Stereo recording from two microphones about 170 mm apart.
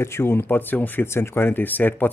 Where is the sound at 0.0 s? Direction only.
15° left (ahead or behind).